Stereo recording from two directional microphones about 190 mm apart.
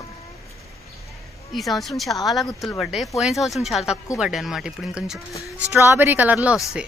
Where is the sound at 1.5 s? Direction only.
Centre (ahead or behind).